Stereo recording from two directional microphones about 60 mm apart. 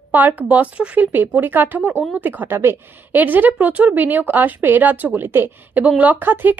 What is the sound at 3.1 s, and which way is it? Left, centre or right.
Speech, right.